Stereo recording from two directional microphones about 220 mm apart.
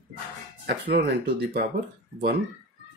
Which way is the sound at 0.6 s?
45° right (ahead or behind).